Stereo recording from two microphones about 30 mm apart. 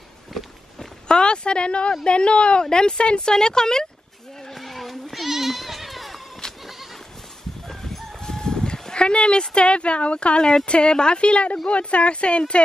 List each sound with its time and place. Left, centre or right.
1.0 s speech: left
2.6 s speech: left
4.5 s goat: centre
6.4 s goat: left
7.6 s crowing: centre
8.9 s speech: left
10.4 s speech: left